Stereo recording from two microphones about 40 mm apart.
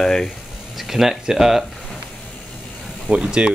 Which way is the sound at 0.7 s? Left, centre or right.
Centre.